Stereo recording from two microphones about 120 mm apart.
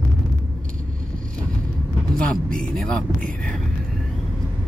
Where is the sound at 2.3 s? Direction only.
5° left (ahead or behind).